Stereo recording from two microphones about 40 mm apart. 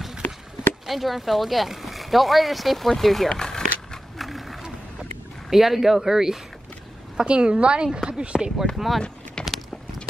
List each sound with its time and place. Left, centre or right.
0.8 s speech: centre
3.3 s a sound: centre
4.2 s a sound: centre
5.5 s speech: centre
7.2 s speech: right
8.7 s speech: centre
9.4 s clip-clop: left